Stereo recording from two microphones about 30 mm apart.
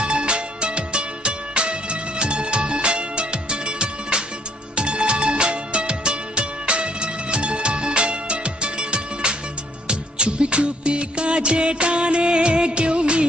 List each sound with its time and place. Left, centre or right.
0.0 s music: right
9.8 s music of bollywood: right